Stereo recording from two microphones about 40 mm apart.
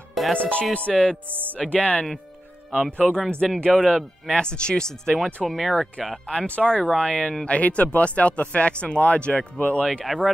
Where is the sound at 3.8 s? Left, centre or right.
Centre.